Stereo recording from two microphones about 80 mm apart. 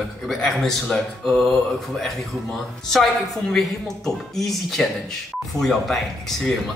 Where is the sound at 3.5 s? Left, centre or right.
Centre.